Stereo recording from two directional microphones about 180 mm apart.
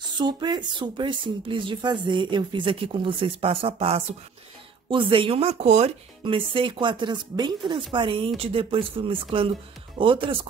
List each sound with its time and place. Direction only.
0.2 s speech: 25° right (ahead or behind)